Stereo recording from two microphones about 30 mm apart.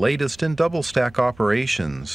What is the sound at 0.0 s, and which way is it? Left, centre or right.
Speech, centre.